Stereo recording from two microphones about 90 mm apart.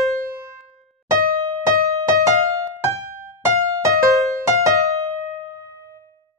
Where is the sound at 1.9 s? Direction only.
35° right (ahead or behind).